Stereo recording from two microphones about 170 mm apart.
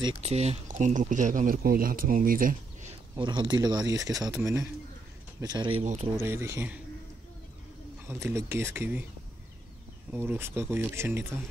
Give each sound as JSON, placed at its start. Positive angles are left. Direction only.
{"t": 0.2, "sound": "speech", "side_deg": -40}
{"t": 3.2, "sound": "speech", "side_deg": -25}
{"t": 5.4, "sound": "speech", "side_deg": -25}
{"t": 6.1, "sound": "speech", "side_deg": -15}
{"t": 8.1, "sound": "speech", "side_deg": -15}
{"t": 10.1, "sound": "speech", "side_deg": -10}